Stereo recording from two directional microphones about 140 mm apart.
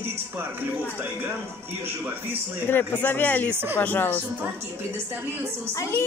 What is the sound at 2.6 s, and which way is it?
Speech, 15° left (ahead or behind).